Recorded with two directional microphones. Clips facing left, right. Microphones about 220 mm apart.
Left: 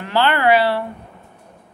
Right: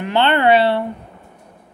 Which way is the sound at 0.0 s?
25° right (ahead or behind).